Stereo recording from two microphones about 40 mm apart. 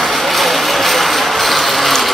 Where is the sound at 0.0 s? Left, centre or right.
Centre.